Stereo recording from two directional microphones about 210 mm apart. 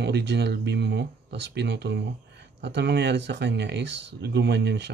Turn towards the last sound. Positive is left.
turn(degrees=-55)  # may be behind; listen again after turning